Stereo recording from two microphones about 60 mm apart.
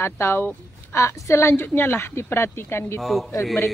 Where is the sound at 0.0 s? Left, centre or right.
Left.